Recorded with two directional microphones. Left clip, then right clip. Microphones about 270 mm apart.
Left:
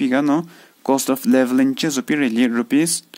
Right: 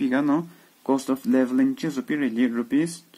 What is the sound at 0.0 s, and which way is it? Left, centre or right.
Speech, left.